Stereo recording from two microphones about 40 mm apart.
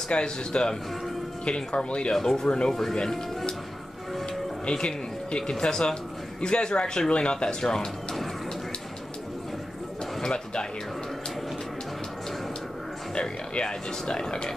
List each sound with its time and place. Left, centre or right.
0.1 s speech: left
2.1 s speech: centre
4.7 s speech: left
10.2 s speech: left
13.1 s speech: left